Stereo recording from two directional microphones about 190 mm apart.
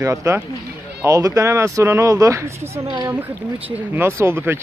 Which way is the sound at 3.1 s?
10° right (ahead or behind).